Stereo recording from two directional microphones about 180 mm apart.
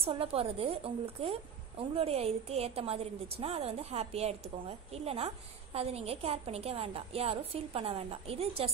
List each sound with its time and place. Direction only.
0.0 s a woman's voice: 35° right (ahead or behind)